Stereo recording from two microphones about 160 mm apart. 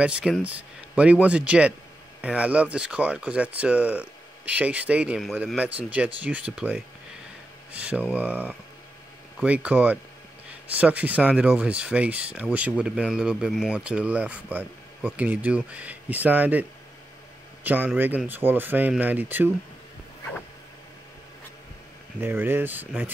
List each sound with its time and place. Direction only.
0.0 s speech: 5° right (ahead or behind)
17.6 s speech: 10° right (ahead or behind)
22.2 s speech: 15° right (ahead or behind)